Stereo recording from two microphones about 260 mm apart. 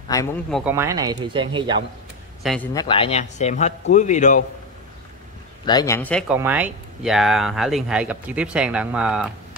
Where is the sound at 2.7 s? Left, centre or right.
Centre.